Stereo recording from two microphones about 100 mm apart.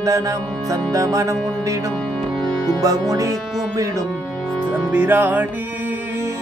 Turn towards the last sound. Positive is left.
turn(degrees=-15)  # may be behind; listen again after turning